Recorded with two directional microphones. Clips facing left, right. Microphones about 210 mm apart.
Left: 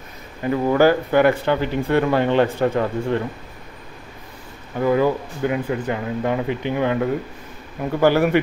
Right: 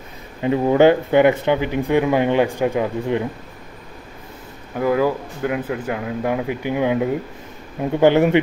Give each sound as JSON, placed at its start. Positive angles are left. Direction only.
{"t": 0.4, "sound": "speech", "side_deg": -20}
{"t": 4.7, "sound": "speech", "side_deg": -5}